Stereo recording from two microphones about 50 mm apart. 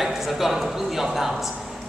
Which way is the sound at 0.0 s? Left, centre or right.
Centre.